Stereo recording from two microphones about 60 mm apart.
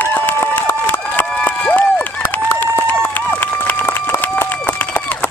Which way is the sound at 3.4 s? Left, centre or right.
Left.